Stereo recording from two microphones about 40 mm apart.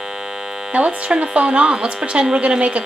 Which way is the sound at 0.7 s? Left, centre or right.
Right.